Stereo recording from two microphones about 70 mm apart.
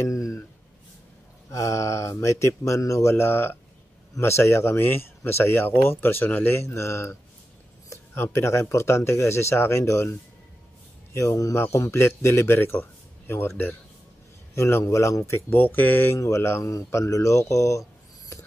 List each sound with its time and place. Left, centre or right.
0.0 s a sound: left
1.5 s speech: left
11.1 s speech: left
14.5 s speech: left
15.5 s speech: left
16.2 s speech: left
16.7 s speech: left